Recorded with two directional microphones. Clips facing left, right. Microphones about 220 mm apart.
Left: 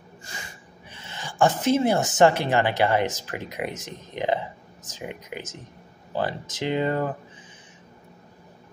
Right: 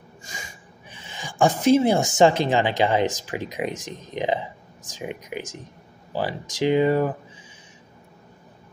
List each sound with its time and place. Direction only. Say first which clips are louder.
0.2 s speech: right 1 dB; 15° right (ahead or behind)